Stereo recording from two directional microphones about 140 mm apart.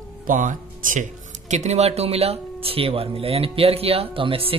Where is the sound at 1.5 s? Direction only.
55° right (ahead or behind).